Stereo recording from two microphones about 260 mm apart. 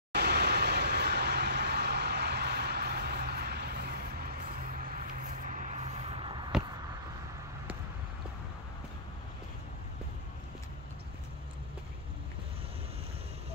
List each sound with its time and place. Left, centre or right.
0.1 s vehicle: right; by 6.5 s centre